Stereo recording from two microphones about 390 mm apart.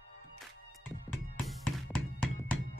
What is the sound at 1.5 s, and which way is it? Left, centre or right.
Music, centre.